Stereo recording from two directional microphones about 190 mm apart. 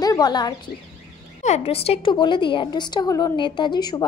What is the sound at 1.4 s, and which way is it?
A woman's voice, 35° left (ahead or behind).